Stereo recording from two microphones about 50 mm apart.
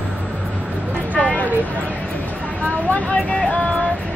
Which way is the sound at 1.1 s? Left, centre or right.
Left.